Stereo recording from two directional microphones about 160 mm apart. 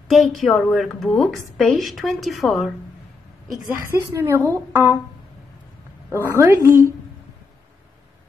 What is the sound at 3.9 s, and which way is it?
A woman's voice, 15° right (ahead or behind).